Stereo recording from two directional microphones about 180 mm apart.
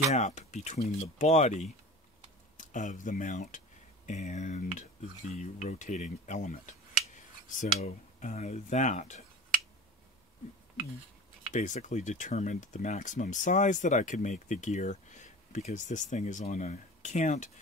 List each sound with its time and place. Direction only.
0.1 s speech: 40° left (ahead or behind)
11.5 s speech: 45° left (ahead or behind)